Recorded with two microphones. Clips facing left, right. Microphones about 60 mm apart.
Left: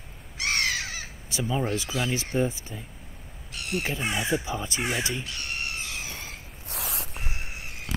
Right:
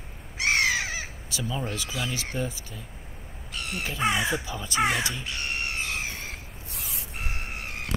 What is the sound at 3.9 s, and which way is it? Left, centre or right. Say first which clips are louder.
Speech: right 6 dB; right.